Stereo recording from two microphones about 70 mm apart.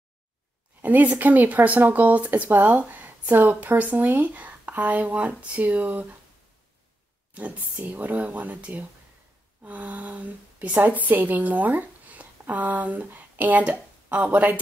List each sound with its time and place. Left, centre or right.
0.8 s speech: right
7.3 s a woman's voice: right